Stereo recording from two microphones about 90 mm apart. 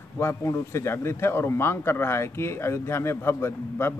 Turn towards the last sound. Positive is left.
turn(degrees=30)  # may be behind; listen again after turning